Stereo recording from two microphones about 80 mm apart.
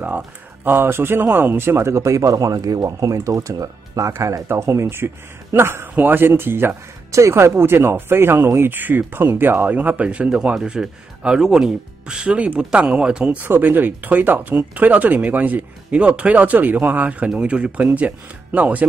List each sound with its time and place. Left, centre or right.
0.7 s speech: right; by 13.4 s centre
13.4 s speech: right